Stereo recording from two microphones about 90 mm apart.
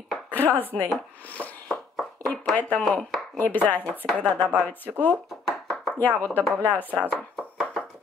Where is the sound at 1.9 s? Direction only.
5° left (ahead or behind).